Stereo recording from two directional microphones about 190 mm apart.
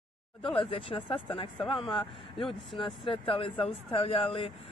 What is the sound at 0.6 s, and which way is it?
Speech, 30° left (ahead or behind).